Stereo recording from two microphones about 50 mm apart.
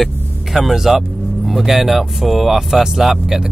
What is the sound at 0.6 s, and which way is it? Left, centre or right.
Speech, centre.